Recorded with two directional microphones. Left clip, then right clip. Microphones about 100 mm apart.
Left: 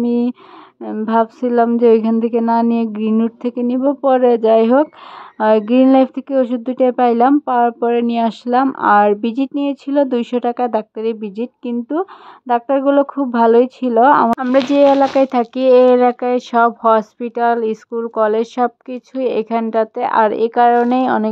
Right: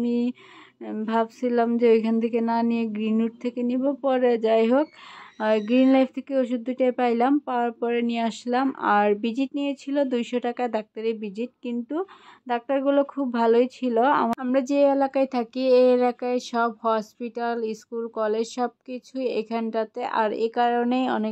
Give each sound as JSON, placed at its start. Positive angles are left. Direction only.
{"t": 0.0, "sound": "a woman's voice", "side_deg": 45}